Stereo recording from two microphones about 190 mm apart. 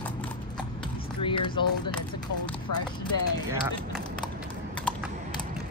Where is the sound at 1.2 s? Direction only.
25° left (ahead or behind).